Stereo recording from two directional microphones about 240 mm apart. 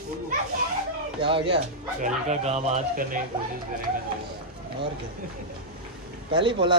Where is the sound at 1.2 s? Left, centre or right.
Right.